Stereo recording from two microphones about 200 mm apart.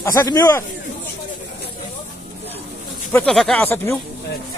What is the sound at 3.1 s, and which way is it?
Speech, 5° left (ahead or behind).